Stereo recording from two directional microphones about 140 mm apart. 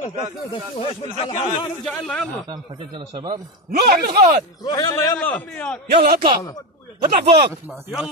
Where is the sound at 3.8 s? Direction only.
90° right.